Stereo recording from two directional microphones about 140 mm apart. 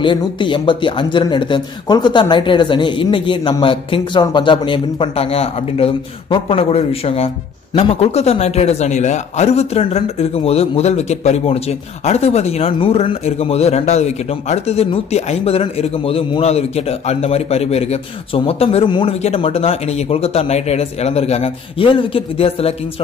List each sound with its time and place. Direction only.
0.0 s a man's voice: 35° left (ahead or behind)